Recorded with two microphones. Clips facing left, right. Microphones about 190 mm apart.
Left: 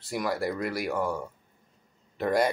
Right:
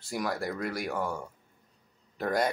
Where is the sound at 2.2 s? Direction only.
Centre (ahead or behind).